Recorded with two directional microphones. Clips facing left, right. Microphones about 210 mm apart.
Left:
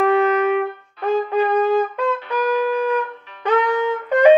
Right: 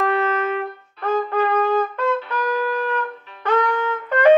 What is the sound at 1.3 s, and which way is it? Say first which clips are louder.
Wind instrument: left 3 dB; 15° left (ahead or behind).